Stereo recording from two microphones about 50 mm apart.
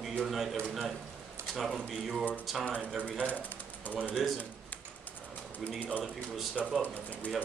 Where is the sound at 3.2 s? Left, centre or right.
Left.